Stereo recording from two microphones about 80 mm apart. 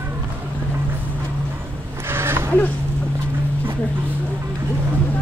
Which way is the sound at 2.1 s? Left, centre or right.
Right.